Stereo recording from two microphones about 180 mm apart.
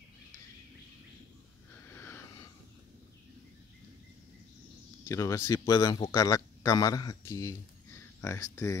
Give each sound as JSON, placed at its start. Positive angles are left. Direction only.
{"t": 1.9, "sound": "wheeze", "side_deg": 15}
{"t": 5.0, "sound": "speech", "side_deg": 15}